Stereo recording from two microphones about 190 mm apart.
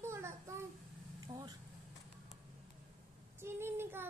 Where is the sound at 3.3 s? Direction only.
15° right (ahead or behind).